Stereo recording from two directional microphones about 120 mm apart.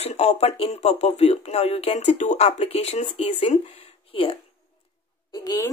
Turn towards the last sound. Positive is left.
turn(degrees=30)  # may be behind; listen again after turning